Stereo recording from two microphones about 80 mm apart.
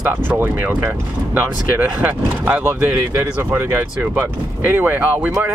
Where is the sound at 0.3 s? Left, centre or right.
Right.